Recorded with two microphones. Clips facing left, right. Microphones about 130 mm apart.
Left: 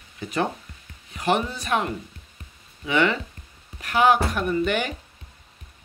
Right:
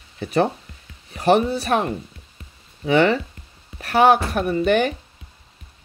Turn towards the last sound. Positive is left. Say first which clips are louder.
# right 5 dB
turn(degrees=-35)  # may be behind; listen again after turning